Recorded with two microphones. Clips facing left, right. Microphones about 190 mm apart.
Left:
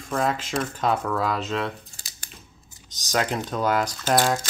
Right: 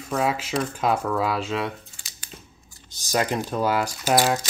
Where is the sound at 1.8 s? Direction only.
40° left (ahead or behind).